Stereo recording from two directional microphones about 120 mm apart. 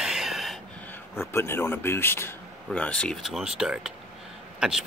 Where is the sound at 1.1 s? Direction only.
20° left (ahead or behind).